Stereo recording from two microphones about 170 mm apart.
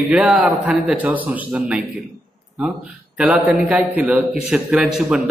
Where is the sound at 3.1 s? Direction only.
5° right (ahead or behind).